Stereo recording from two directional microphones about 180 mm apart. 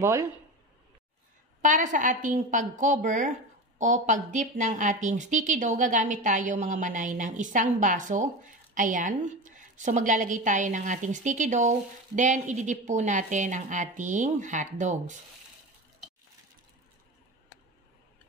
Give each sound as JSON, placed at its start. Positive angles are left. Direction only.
{"t": 0.0, "sound": "speech", "side_deg": -15}
{"t": 1.6, "sound": "a woman's voice", "side_deg": -45}